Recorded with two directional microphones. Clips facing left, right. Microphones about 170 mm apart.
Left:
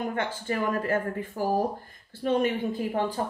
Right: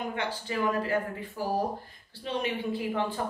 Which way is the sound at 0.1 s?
50° left (ahead or behind).